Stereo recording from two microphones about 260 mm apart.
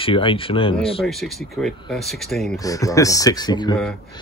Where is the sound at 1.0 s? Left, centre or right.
Centre.